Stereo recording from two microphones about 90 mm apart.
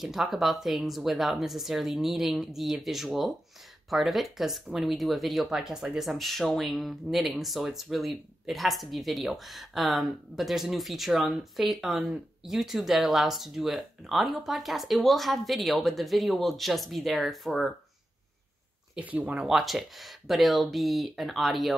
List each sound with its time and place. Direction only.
0.0 s speech: centre (ahead or behind)
18.9 s speech: 15° right (ahead or behind)
19.4 s speech: centre (ahead or behind)